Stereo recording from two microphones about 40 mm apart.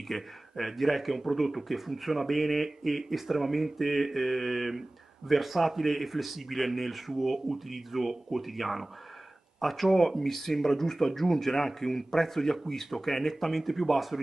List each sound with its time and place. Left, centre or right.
0.1 s speech: centre